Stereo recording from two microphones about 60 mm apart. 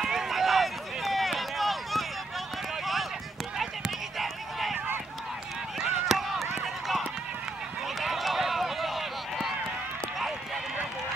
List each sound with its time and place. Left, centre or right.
0.0 s run: centre
3.5 s a sound: centre
5.8 s run: centre
8.0 s run: centre